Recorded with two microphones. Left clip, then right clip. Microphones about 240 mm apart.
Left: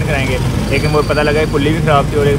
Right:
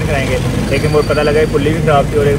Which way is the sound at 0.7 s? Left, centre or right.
Centre.